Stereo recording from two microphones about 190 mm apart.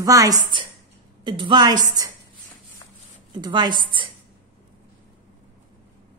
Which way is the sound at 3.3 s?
25° right (ahead or behind).